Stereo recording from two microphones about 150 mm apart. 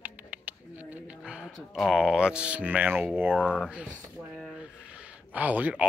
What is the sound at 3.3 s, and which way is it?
Speech, 5° left (ahead or behind).